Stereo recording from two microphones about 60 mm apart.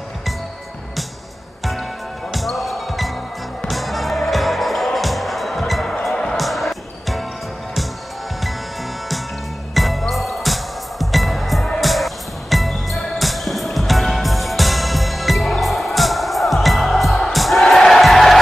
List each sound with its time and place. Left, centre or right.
2.3 s basketball bounce: centre
3.6 s music: centre
9.8 s music: centre